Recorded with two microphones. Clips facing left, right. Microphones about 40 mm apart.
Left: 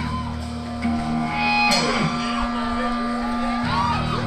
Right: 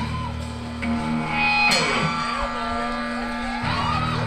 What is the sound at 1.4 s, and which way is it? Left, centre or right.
Music, right.